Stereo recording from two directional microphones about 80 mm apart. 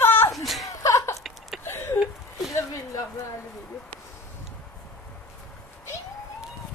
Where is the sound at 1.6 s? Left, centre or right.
Left.